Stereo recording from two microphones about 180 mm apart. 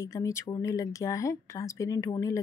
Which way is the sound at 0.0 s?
15° left (ahead or behind).